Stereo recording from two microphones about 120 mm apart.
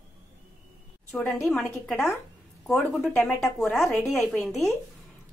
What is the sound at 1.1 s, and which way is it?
Speech, 15° left (ahead or behind).